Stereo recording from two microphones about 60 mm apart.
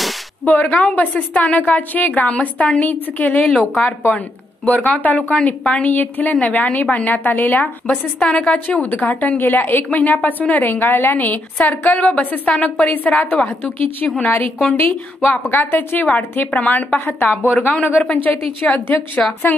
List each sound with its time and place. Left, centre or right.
0.5 s a woman's voice: left
4.6 s a woman's voice: left
9.8 s a woman's voice: left
14.0 s a woman's voice: centre
14.7 s a woman's voice: left
19.2 s a woman's voice: centre